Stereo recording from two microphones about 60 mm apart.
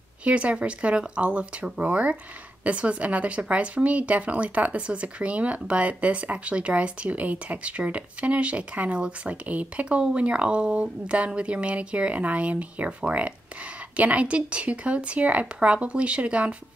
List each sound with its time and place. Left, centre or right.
0.2 s speech: right